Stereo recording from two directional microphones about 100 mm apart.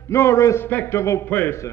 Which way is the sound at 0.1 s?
30° left (ahead or behind).